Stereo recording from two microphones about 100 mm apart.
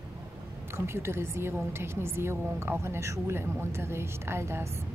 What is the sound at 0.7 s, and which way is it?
A woman's voice, 25° right (ahead or behind).